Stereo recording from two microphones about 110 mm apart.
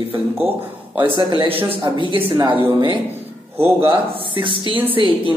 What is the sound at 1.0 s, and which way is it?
Speech, 45° right (ahead or behind).